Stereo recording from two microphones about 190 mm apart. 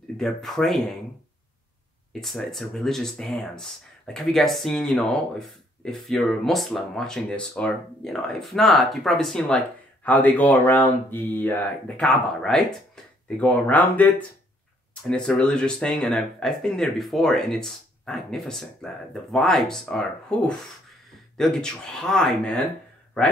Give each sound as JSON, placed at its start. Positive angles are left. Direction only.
{"t": 0.2, "sound": "speech", "side_deg": 0}
{"t": 2.1, "sound": "speech", "side_deg": 0}